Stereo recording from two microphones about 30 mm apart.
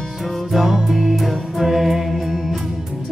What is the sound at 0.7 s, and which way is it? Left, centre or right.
Music, centre.